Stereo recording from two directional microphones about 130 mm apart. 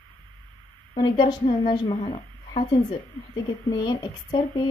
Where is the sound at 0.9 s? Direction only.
35° left (ahead or behind).